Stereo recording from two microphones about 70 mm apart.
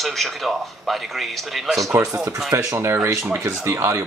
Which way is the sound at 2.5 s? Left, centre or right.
Right.